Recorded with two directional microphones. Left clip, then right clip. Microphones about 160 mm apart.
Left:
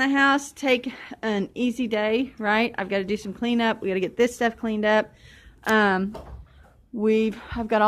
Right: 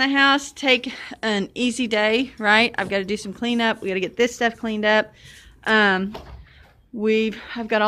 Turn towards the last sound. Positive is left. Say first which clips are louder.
# right 1 dB
turn(degrees=5)  # may be behind; listen again after turning